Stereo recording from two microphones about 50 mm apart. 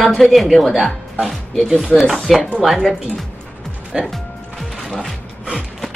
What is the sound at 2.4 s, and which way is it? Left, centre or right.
Speech, centre.